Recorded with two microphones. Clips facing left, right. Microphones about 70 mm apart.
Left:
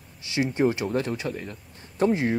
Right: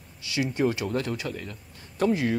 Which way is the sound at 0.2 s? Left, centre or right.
Left.